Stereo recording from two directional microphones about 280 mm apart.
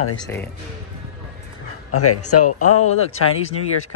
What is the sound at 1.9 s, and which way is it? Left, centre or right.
Speech, left.